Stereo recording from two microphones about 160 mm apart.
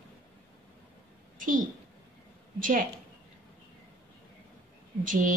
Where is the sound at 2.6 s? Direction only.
60° right (ahead or behind).